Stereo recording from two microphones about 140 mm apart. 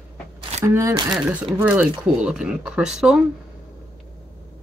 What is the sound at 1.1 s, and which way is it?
Speech, 5° right (ahead or behind).